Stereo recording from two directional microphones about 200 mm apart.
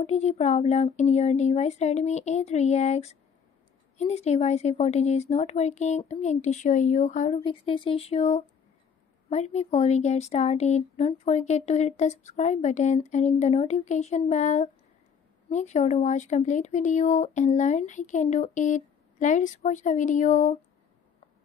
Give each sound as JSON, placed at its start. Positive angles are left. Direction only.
{"t": 0.0, "sound": "speech", "side_deg": 35}
{"t": 7.4, "sound": "speech", "side_deg": 25}